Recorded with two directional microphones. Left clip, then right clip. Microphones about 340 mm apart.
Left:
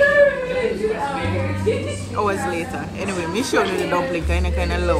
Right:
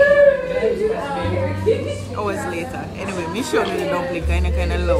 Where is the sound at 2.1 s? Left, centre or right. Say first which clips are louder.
Left 4 dB; centre.